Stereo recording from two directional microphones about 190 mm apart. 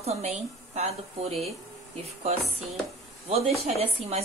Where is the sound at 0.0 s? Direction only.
35° right (ahead or behind).